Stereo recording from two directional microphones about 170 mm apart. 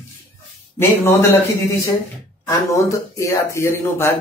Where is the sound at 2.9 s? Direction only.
20° left (ahead or behind).